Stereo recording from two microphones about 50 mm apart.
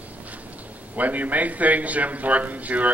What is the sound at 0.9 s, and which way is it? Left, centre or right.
Speech, right.